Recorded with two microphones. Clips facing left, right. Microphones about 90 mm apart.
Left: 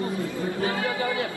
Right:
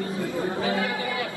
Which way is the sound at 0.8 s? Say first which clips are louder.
Left 1 dB; 30° left (ahead or behind).